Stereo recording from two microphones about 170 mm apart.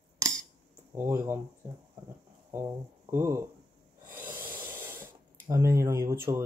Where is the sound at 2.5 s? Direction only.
15° right (ahead or behind).